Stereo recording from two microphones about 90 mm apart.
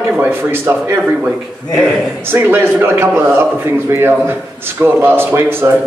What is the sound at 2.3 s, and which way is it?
Speech, 25° right (ahead or behind).